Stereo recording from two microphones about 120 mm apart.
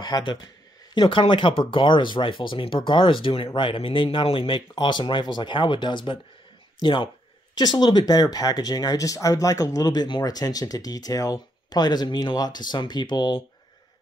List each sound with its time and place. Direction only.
0.0 s speech: 40° left (ahead or behind)
7.5 s speech: 35° left (ahead or behind)